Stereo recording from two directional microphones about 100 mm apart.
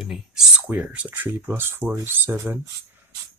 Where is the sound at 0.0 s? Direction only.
5° right (ahead or behind).